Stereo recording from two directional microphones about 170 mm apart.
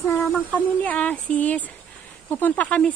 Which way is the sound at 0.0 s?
10° left (ahead or behind).